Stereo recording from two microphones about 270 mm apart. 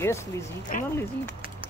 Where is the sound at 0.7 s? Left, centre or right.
Left.